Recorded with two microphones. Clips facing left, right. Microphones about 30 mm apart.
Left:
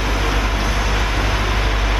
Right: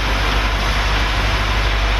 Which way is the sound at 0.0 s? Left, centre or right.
Right.